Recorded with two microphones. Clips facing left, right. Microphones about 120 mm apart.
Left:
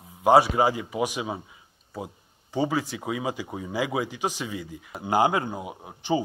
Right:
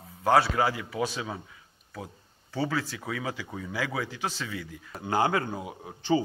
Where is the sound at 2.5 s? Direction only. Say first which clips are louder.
Left 4 dB; 15° left (ahead or behind).